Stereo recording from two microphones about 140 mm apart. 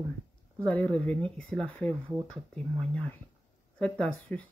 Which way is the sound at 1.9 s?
20° right (ahead or behind).